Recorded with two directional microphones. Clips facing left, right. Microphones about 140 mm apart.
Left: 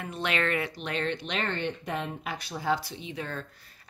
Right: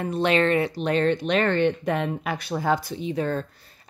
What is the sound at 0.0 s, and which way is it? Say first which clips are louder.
Speech: right 9 dB; 35° right (ahead or behind).